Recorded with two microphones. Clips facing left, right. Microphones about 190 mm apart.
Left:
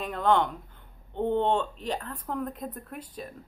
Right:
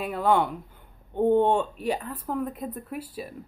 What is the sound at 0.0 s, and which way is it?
Speech, 10° right (ahead or behind).